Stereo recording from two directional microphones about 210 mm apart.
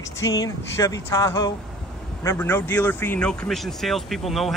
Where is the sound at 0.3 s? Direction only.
15° left (ahead or behind).